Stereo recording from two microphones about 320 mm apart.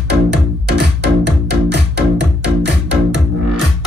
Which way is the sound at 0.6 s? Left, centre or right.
Right.